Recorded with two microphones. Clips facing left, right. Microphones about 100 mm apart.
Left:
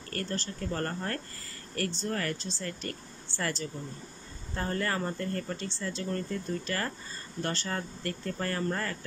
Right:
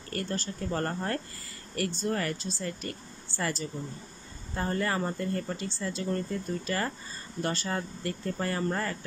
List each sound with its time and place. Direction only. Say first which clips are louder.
0.1 s speech: right 2 dB; 15° right (ahead or behind)